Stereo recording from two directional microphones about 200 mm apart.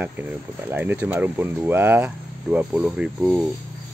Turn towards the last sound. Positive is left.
turn(degrees=-5)  # may be behind; listen again after turning